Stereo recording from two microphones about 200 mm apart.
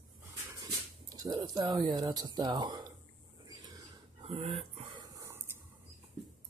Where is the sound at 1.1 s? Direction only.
20° right (ahead or behind).